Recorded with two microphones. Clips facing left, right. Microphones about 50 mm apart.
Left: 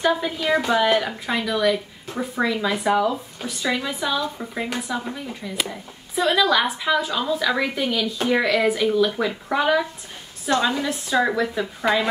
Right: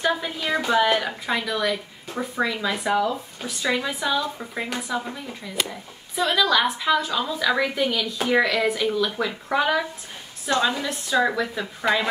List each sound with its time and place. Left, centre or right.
0.0 s a woman's voice: centre